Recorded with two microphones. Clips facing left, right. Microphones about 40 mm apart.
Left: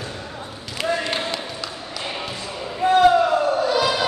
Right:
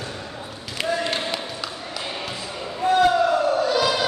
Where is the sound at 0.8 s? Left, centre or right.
Centre.